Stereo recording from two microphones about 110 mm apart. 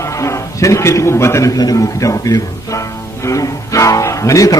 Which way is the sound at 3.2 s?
30° left (ahead or behind).